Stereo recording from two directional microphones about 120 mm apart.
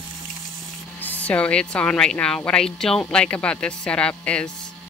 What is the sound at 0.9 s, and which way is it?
Speech, 15° left (ahead or behind).